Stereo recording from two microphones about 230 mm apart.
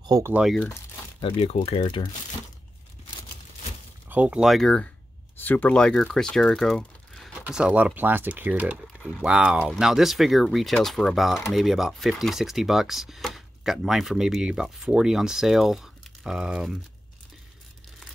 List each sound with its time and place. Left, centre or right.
0.0 s speech: centre
1.2 s speech: left
4.1 s speech: centre